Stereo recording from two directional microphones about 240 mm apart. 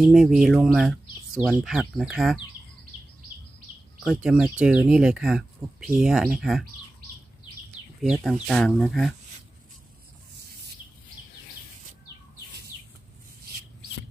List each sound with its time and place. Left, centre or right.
0.0 s speech: centre
4.0 s speech: centre
8.0 s speech: centre